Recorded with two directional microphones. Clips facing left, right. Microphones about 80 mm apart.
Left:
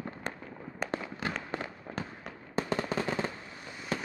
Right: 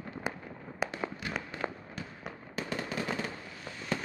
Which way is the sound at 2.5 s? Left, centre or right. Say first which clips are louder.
Left 5 dB; left.